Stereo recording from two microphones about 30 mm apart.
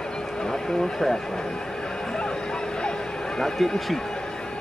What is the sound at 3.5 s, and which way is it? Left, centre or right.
Speech, centre.